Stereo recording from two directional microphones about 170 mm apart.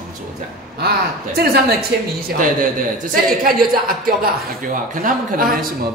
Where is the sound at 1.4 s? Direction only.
65° right (ahead or behind).